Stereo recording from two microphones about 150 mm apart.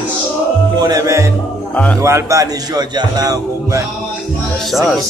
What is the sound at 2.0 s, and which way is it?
A man's voice, 20° right (ahead or behind).